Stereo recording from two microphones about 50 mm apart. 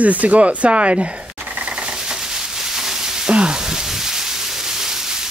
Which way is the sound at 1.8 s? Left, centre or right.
Centre.